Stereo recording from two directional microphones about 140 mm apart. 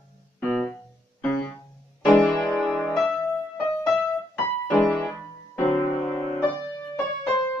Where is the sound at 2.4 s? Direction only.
5° right (ahead or behind).